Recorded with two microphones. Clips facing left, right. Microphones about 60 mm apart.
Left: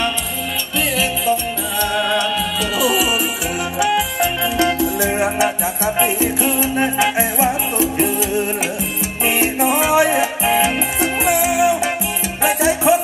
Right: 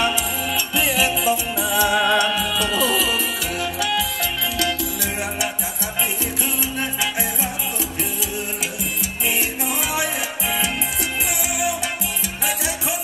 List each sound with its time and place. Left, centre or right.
0.7 s music: centre
3.7 s music: left